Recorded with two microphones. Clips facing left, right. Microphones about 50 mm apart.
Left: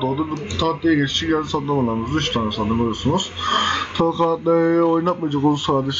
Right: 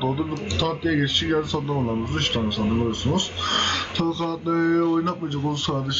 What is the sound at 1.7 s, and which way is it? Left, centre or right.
Speech, centre.